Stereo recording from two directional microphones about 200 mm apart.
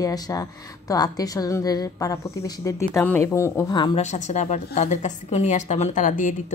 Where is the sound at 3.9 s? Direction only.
35° left (ahead or behind).